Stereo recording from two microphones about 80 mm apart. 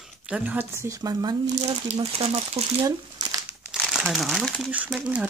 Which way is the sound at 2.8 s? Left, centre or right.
Right.